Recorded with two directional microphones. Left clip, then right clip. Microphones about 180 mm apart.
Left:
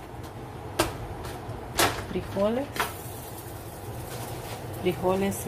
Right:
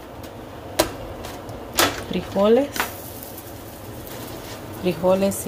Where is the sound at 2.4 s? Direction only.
45° right (ahead or behind).